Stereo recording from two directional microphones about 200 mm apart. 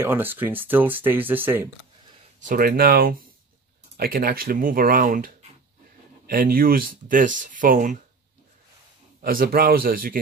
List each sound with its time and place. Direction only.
0.0 s speech: 10° right (ahead or behind)
2.4 s speech: 45° right (ahead or behind)
9.2 s speech: 45° right (ahead or behind)